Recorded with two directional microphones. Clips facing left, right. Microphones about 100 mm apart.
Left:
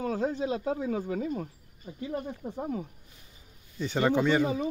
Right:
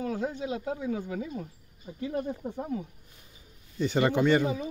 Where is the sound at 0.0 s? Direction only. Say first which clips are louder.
Left 2 dB; 35° left (ahead or behind); by 1.5 s 50° left (ahead or behind).